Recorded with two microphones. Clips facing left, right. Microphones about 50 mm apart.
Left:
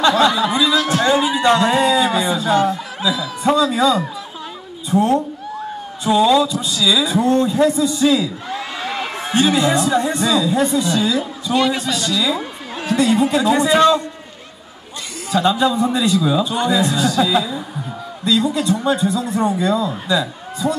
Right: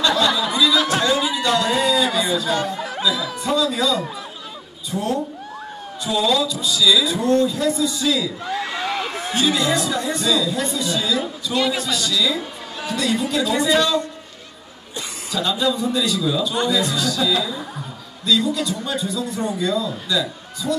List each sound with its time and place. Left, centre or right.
0.0 s a sound: left
2.8 s music: centre
3.4 s a man's voice: left
11.5 s a man's voice: centre
11.8 s a man's voice: left
15.3 s a man's voice: left